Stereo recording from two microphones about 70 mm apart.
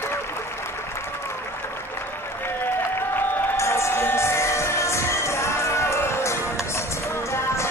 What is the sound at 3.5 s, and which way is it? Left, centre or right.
Music, left.